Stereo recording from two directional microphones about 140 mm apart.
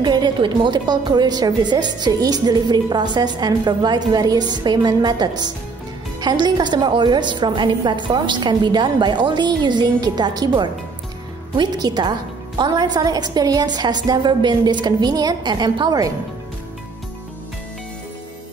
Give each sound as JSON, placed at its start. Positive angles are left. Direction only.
{"t": 0.0, "sound": "a woman's voice", "side_deg": -30}